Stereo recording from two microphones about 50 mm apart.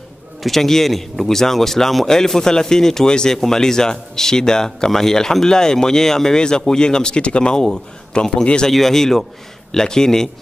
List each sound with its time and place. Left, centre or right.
0.4 s a man's voice: centre